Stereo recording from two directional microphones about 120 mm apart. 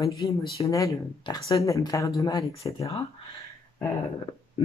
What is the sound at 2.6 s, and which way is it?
Speech, 40° left (ahead or behind).